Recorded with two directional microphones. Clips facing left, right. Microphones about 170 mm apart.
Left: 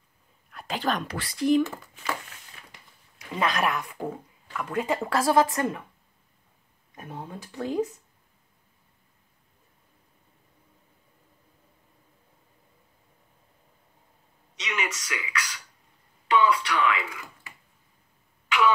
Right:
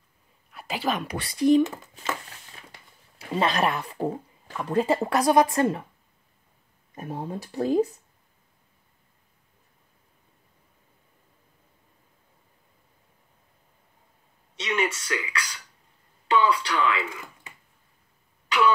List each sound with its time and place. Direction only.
0.5 s speech: 5° right (ahead or behind)
1.1 s speech: 20° right (ahead or behind)
3.2 s speech: 30° right (ahead or behind)
5.1 s speech: 20° right (ahead or behind)
7.0 s speech: 35° right (ahead or behind)
14.5 s throat clearing: 30° right (ahead or behind)
16.3 s a sound: 30° right (ahead or behind)